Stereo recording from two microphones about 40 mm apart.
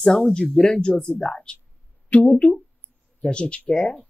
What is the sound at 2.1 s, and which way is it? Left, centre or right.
Speech, left.